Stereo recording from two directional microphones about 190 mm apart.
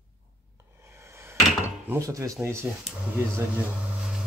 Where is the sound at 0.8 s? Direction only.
15° right (ahead or behind).